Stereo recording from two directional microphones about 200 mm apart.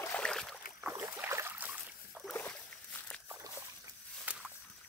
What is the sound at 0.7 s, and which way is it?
Boat, 10° right (ahead or behind).